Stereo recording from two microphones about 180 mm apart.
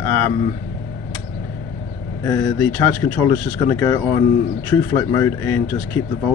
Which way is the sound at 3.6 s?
20° left (ahead or behind).